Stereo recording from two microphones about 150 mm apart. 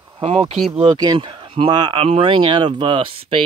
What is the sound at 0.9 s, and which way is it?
Speech, 30° right (ahead or behind).